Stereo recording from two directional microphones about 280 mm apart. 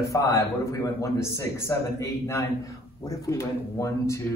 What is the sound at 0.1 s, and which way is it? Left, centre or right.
A man's voice, centre.